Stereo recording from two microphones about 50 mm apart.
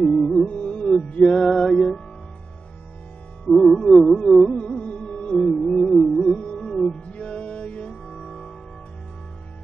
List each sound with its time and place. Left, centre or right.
0.0 s music: centre
0.5 s music: left
1.3 s music: centre
3.4 s music: centre
4.6 s music: centre
5.4 s music: centre
6.4 s music: left
6.7 s music: centre
7.1 s music: left